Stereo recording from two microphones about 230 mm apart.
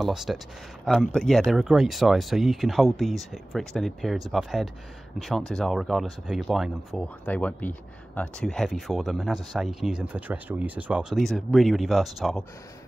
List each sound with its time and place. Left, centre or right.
0.0 s speech: centre